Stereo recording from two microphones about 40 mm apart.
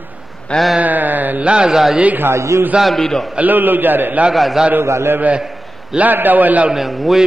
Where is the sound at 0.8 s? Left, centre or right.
Right.